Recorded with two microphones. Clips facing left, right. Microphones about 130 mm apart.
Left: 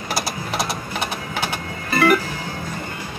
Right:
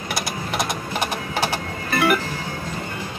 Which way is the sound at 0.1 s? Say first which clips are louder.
Left 2 dB; 35° left (ahead or behind).